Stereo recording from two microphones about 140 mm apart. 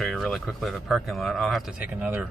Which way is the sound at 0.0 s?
Centre (ahead or behind).